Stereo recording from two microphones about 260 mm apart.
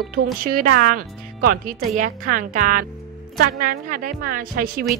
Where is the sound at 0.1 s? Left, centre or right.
Right.